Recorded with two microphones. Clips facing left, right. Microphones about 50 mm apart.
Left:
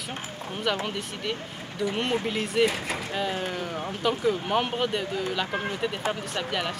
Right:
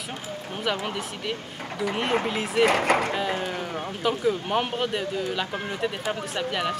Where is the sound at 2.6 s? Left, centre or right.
Right.